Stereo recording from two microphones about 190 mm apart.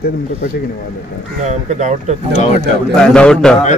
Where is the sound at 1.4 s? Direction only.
40° right (ahead or behind).